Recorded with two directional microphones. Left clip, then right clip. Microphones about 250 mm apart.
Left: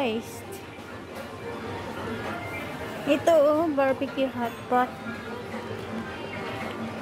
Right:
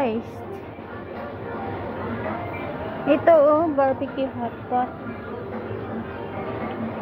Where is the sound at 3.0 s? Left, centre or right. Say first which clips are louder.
Right 4 dB; centre.